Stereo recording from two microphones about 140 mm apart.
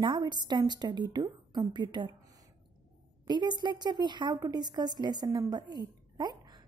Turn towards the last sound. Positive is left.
turn(degrees=-30)  # may be behind; listen again after turning